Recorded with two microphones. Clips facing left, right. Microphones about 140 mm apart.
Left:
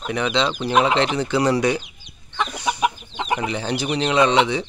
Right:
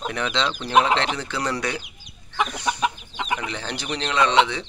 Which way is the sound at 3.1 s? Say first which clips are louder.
Left 4 dB; 25° left (ahead or behind).